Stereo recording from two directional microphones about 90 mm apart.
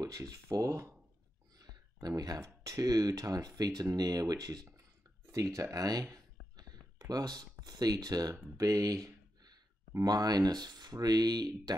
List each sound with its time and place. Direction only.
0.0 s speech: 35° right (ahead or behind)
1.6 s speech: 45° right (ahead or behind)
6.1 s a sound: 45° right (ahead or behind)
10.0 s speech: 45° right (ahead or behind)